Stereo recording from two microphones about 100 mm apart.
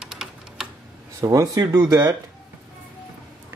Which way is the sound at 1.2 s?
35° right (ahead or behind).